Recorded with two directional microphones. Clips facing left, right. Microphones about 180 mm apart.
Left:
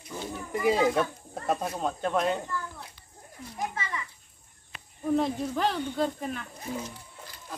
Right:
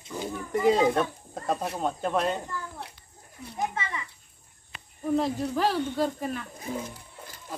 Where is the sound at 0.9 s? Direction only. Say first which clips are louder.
Right 1 dB; 5° left (ahead or behind).